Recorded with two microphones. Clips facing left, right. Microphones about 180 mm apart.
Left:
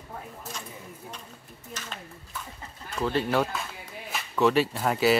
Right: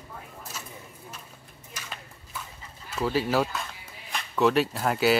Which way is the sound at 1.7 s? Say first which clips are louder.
Left 3 dB; 10° right (ahead or behind).